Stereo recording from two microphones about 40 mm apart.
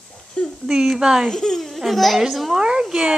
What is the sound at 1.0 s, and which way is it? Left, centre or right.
Speech, centre.